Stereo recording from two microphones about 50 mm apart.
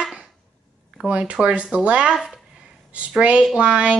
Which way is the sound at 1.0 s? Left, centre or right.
Right.